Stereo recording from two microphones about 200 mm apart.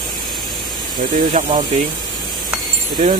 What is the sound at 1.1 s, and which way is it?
Speech, 30° right (ahead or behind).